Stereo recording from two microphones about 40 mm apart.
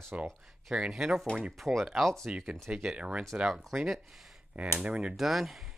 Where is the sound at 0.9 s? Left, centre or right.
Centre.